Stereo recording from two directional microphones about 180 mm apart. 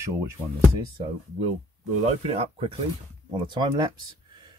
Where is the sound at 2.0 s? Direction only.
35° right (ahead or behind).